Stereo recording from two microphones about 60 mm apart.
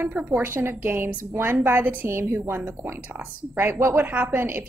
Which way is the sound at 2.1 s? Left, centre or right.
Right.